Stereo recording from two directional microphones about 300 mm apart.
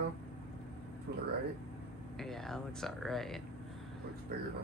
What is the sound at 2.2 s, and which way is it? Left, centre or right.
Speech, centre.